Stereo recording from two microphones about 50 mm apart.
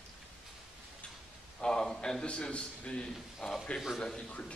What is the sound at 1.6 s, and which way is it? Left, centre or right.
A man's voice, centre.